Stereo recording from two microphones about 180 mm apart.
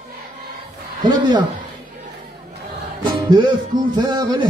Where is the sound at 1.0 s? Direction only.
25° right (ahead or behind).